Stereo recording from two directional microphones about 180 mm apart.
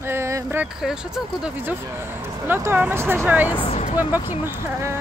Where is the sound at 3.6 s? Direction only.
35° left (ahead or behind).